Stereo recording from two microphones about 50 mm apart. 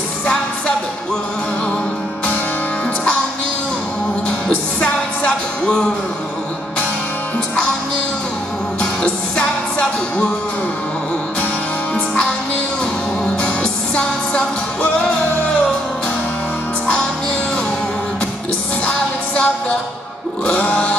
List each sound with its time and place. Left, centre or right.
4.3 s music: left
9.0 s music: left
11.9 s music: centre
18.9 s music: left